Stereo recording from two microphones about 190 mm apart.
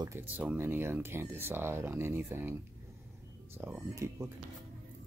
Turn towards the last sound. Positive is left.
turn(degrees=-15)  # may be behind; listen again after turning